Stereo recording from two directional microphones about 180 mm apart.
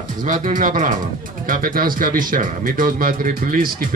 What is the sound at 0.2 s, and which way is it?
Speech, 45° right (ahead or behind).